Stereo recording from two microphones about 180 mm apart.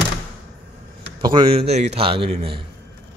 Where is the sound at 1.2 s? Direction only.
30° right (ahead or behind).